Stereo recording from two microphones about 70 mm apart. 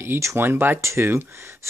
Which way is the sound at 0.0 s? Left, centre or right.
Right.